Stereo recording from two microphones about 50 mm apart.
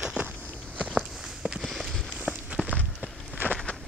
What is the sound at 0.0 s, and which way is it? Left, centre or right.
Walk, right.